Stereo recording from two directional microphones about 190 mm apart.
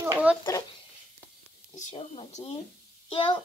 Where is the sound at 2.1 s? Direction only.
35° left (ahead or behind).